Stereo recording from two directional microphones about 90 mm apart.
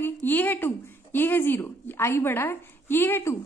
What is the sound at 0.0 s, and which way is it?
A woman's voice, 20° left (ahead or behind).